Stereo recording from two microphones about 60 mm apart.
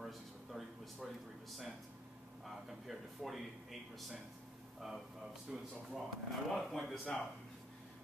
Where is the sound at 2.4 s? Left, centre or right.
Centre.